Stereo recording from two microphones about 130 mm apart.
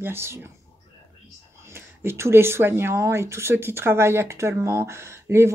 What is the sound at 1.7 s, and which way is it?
Speech, 20° right (ahead or behind).